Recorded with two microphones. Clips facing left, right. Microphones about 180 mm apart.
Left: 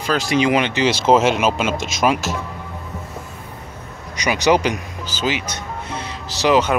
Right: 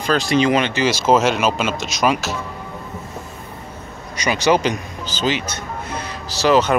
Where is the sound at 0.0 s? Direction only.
10° left (ahead or behind).